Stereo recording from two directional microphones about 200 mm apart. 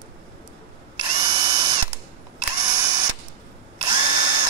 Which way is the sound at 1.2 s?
20° right (ahead or behind).